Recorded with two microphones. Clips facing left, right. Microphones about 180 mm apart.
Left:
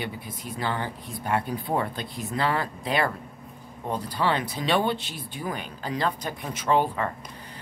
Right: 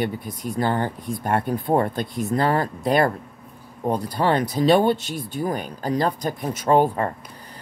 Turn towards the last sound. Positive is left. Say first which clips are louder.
# right 5 dB
turn(degrees=-45)  # may be behind; listen again after turning